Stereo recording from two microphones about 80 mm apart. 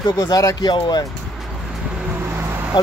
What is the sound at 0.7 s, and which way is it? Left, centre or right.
Speech, left.